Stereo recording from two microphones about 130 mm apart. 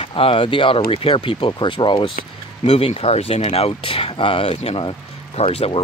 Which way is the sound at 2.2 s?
55° left (ahead or behind).